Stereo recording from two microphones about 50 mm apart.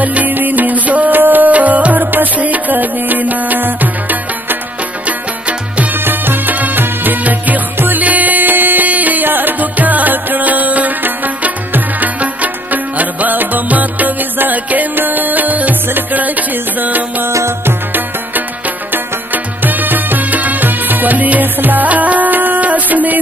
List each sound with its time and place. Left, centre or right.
0.0 s music: right
5.0 s music: right
5.9 s music: right
17.3 s music: right
17.6 s music: right